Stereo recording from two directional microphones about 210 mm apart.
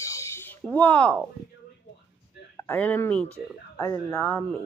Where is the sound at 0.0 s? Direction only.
15° left (ahead or behind).